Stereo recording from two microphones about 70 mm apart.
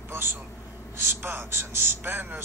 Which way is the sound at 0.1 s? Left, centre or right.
Right.